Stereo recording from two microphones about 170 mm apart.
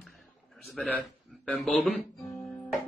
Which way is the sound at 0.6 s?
Centre (ahead or behind).